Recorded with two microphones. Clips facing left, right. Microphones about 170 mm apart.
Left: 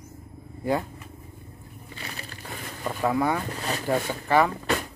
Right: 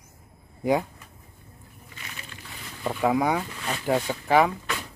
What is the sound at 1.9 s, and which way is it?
Crushing, 35° left (ahead or behind).